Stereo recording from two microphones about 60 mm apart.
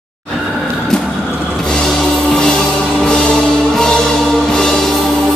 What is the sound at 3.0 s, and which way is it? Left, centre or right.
Music, centre.